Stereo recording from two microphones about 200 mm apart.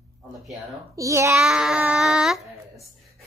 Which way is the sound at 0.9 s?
15° right (ahead or behind).